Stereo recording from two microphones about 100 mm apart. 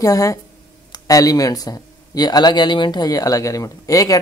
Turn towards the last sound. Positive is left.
turn(degrees=35)  # may be behind; listen again after turning